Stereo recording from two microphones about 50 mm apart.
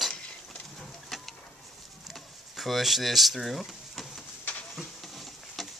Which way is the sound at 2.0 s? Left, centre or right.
Centre.